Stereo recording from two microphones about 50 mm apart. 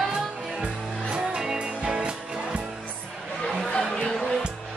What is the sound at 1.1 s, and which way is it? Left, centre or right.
Music, centre.